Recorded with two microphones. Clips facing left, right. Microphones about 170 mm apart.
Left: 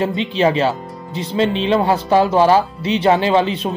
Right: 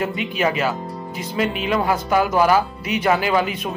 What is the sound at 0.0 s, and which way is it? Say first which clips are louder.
Speech: left 5 dB; 25° left (ahead or behind).